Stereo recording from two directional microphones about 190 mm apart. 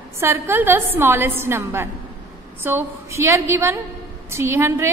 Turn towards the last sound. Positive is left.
turn(degrees=-10)  # may be behind; listen again after turning